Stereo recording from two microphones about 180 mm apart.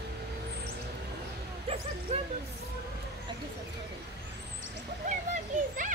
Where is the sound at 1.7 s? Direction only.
35° right (ahead or behind).